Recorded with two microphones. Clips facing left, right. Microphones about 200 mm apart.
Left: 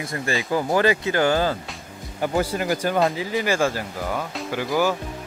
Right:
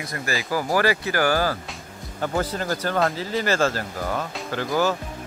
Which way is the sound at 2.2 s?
10° left (ahead or behind).